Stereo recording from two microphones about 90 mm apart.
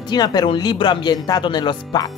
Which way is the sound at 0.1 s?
50° left (ahead or behind).